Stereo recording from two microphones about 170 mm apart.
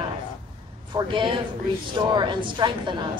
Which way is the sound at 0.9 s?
30° right (ahead or behind).